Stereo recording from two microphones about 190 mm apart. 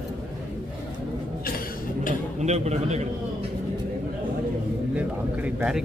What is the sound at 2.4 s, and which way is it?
Speech, 35° right (ahead or behind).